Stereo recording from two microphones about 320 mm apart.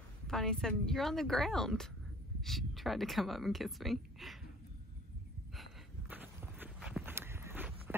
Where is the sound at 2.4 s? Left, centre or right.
Centre.